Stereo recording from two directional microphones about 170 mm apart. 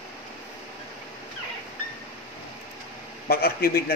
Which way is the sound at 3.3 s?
60° left (ahead or behind).